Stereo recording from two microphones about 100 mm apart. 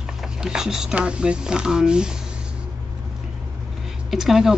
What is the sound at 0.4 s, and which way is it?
Speech, 5° right (ahead or behind).